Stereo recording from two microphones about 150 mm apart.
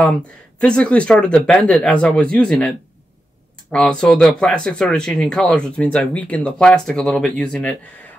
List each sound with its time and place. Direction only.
0.6 s speech: 5° left (ahead or behind)
3.7 s speech: 5° left (ahead or behind)